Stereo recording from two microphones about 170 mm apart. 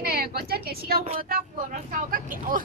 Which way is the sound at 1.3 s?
50° right (ahead or behind).